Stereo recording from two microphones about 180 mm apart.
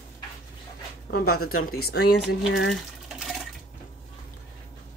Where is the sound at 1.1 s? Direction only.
60° left (ahead or behind).